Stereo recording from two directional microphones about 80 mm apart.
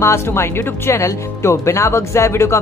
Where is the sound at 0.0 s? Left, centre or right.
Left.